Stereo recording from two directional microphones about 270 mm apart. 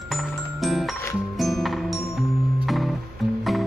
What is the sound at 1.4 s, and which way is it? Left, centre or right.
Music, centre.